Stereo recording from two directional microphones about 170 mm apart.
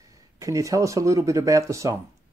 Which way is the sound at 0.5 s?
20° right (ahead or behind).